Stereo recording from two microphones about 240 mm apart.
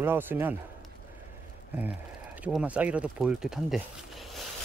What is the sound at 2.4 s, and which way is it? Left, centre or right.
Speech, centre.